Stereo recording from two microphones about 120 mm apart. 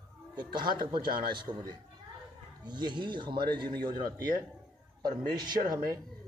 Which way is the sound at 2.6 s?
40° right (ahead or behind).